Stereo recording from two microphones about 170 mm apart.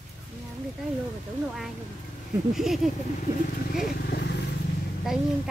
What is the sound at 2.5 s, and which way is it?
Child singing, centre (ahead or behind).